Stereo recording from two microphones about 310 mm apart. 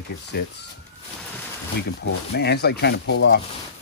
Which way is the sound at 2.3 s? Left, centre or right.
Left.